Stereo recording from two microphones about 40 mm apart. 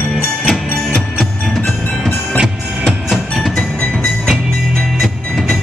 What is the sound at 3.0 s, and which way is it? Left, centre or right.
Music, centre.